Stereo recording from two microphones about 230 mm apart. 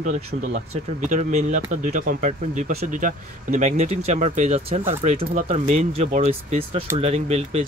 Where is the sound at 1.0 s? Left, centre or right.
Right.